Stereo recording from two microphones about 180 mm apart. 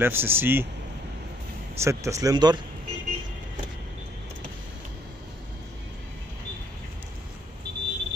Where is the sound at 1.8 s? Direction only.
15° right (ahead or behind).